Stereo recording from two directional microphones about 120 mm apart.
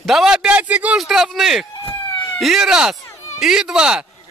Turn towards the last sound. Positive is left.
turn(degrees=-5)  # may be behind; listen again after turning